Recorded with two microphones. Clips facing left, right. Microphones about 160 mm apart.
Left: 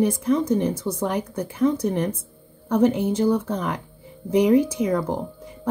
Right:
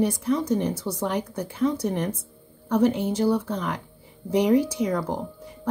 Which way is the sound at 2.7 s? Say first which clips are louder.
Left 2 dB; 20° left (ahead or behind).